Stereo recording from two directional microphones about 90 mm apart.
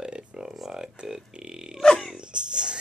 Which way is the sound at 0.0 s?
10° right (ahead or behind).